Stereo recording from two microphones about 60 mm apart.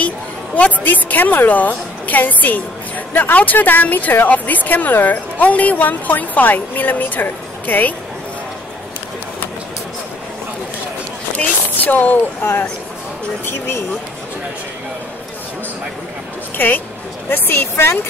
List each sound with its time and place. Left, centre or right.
0.6 s speech: left
11.3 s speech: left
13.5 s speech: left
16.5 s a woman's voice: left